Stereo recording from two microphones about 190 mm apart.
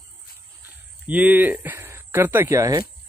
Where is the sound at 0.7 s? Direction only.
10° right (ahead or behind).